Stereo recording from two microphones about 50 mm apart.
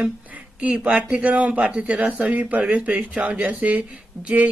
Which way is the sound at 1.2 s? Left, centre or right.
Right.